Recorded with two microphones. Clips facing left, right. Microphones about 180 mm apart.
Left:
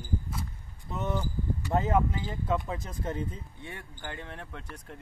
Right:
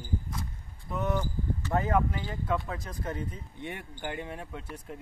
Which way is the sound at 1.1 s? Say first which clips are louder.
Right 1 dB; 15° left (ahead or behind).